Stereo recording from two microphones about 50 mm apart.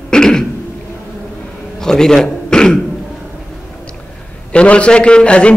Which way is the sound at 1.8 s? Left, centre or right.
Centre.